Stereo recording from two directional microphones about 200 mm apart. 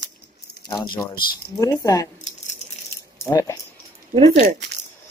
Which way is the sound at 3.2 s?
15° left (ahead or behind).